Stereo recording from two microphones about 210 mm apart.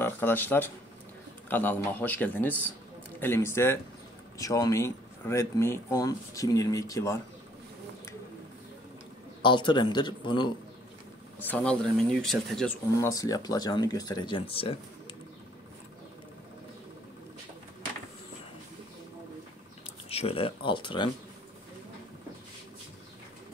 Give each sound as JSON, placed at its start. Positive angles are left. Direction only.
{"t": 0.0, "sound": "speech", "side_deg": 10}
{"t": 9.4, "sound": "speech", "side_deg": 20}
{"t": 11.3, "sound": "speech", "side_deg": 10}
{"t": 13.0, "sound": "speech", "side_deg": 15}
{"t": 20.1, "sound": "speech", "side_deg": 30}